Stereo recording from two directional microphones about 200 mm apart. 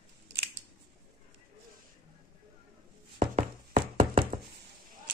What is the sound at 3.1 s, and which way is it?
Knock, 40° right (ahead or behind).